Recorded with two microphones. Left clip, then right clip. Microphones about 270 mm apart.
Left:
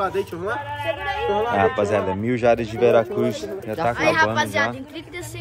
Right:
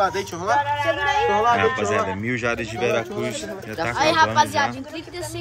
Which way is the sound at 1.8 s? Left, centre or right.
Centre.